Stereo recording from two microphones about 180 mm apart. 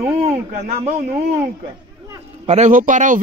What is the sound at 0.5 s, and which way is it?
Speech, 45° right (ahead or behind).